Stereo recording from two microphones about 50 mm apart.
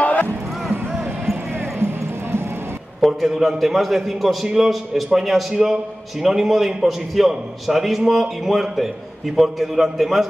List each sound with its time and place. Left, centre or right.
0.0 s music: left
1.3 s basketball bounce: right
3.0 s a man's voice: centre